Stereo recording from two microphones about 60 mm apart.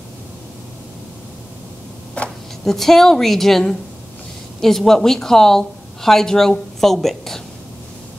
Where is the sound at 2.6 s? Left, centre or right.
Centre.